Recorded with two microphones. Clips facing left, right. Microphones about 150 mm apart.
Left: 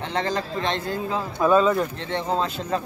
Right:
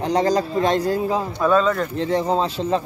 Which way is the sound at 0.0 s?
40° right (ahead or behind).